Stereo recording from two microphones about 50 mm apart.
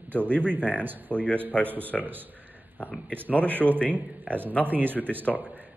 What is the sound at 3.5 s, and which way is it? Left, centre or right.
Speech, right.